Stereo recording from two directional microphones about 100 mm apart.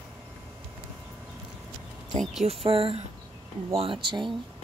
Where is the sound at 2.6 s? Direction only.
70° right (ahead or behind).